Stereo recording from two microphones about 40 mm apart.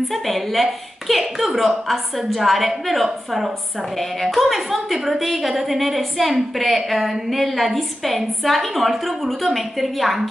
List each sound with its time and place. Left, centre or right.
0.1 s a woman's voice: centre